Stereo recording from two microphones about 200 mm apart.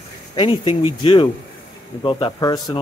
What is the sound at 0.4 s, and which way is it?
Speech, 25° left (ahead or behind).